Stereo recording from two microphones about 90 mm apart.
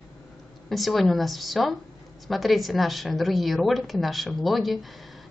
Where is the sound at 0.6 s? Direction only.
Centre (ahead or behind).